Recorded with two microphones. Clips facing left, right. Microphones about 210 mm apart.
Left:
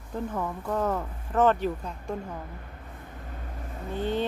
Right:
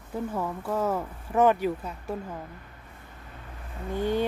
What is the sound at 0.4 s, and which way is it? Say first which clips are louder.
Speech: even; 5° right (ahead or behind).